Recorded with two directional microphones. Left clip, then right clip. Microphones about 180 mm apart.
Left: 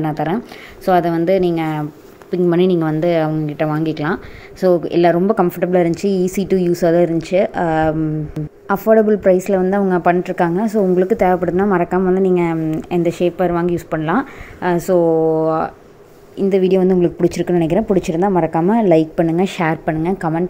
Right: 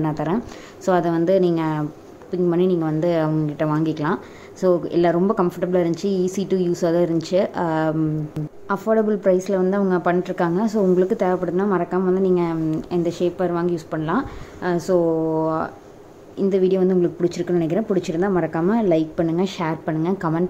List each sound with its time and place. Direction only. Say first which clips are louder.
0.0 s speech: left 4 dB; 10° left (ahead or behind)
2.3 s a woman's voice: left 5 dB; 25° left (ahead or behind)
3.1 s a woman's voice: left 4 dB; 10° left (ahead or behind)